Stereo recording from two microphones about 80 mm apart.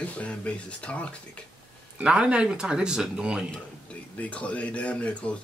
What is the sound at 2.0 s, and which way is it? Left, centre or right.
Speech, centre.